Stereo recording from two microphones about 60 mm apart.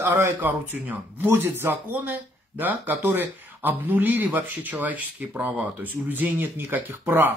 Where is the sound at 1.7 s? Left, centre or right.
Right.